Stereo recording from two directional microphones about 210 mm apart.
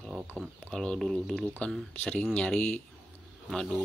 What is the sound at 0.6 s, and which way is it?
Speech, 5° left (ahead or behind).